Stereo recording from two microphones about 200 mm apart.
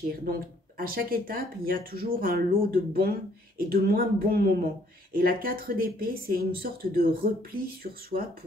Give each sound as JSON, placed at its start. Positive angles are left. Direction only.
{"t": 0.2, "sound": "speech", "side_deg": -45}